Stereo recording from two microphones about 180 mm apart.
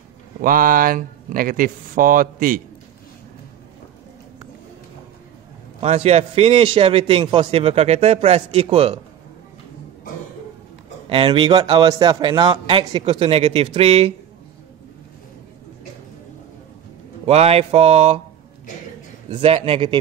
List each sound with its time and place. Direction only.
0.4 s speech: 50° right (ahead or behind)
5.8 s a man's voice: 35° right (ahead or behind)
11.1 s a man's voice: 30° right (ahead or behind)
17.3 s a man's voice: 35° right (ahead or behind)
19.2 s a man's voice: 35° right (ahead or behind)